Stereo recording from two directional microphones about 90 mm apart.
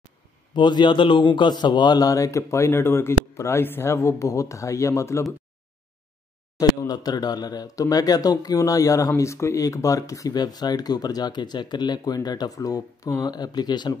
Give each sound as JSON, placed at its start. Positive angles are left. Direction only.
{"t": 0.6, "sound": "a man's voice", "side_deg": 60}
{"t": 6.9, "sound": "speech", "side_deg": 45}